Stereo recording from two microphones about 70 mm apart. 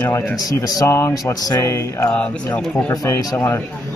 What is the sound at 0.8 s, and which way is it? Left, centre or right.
Speech, left.